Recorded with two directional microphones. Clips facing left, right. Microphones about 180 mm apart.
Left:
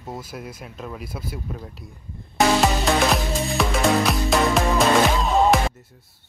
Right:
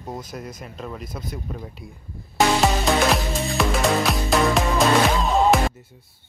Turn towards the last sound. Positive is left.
turn(degrees=0)  # may be behind; listen again after turning